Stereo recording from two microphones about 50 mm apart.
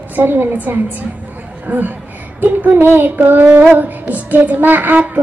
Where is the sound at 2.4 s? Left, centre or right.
Right.